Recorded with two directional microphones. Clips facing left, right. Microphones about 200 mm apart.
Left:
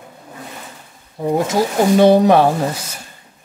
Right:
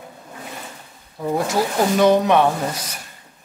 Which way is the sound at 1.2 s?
20° left (ahead or behind).